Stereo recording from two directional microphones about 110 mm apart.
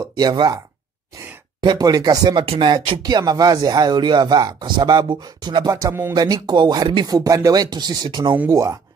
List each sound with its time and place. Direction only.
0.1 s speech: 40° right (ahead or behind)
1.6 s speech: 40° right (ahead or behind)
2.6 s speech: 50° right (ahead or behind)
3.0 s speech: 40° right (ahead or behind)
8.5 s speech: 30° right (ahead or behind)